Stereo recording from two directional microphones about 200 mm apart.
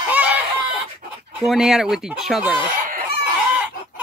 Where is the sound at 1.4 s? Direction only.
Centre (ahead or behind).